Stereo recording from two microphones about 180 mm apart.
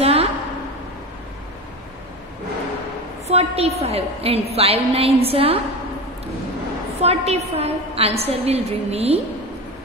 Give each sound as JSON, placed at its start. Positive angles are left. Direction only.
{"t": 0.0, "sound": "a sound", "side_deg": -35}
{"t": 3.3, "sound": "a woman's voice", "side_deg": -35}
{"t": 7.0, "sound": "a woman's voice", "side_deg": -35}